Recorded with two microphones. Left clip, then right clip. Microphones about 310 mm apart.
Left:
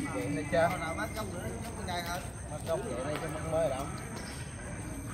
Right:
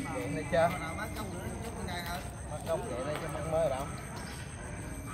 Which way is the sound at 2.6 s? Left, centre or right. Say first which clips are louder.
Even; right.